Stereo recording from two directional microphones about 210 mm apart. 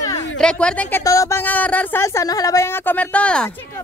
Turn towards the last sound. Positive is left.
turn(degrees=5)  # may be behind; listen again after turning